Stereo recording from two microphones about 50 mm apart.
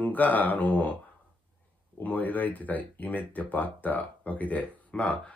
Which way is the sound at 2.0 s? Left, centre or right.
Left.